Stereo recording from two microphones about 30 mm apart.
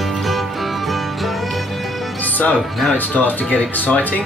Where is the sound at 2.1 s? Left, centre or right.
Left.